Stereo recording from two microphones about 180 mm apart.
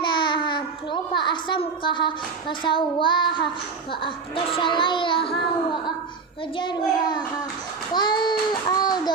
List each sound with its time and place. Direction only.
0.0 s a child's voice: 25° left (ahead or behind)
4.6 s speech: 25° left (ahead or behind)
6.5 s speech: 25° left (ahead or behind)